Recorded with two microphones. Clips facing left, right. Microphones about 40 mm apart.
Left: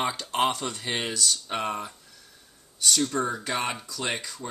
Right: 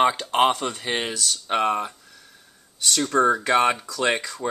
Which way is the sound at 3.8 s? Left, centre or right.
Right.